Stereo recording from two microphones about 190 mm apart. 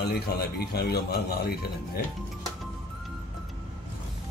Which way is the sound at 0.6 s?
60° left (ahead or behind).